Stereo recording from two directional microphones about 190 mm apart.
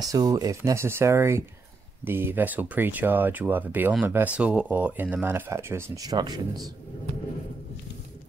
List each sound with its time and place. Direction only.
0.0 s speech: 20° right (ahead or behind)